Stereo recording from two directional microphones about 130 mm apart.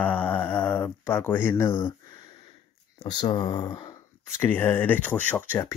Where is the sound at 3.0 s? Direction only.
35° left (ahead or behind).